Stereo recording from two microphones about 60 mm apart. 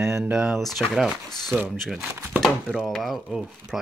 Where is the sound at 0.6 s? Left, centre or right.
Centre.